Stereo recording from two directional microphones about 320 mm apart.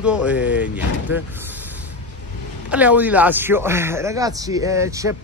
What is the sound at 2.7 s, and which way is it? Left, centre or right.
Speech, centre.